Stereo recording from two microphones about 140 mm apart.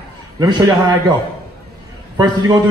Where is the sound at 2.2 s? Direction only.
30° right (ahead or behind).